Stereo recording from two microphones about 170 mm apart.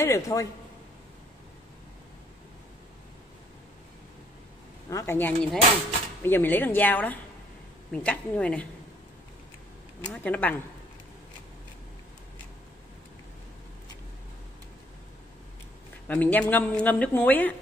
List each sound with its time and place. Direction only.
0.0 s a man's voice: 20° left (ahead or behind)
4.8 s speech: 20° left (ahead or behind)
10.0 s speech: 10° left (ahead or behind)
16.1 s speech: 10° left (ahead or behind)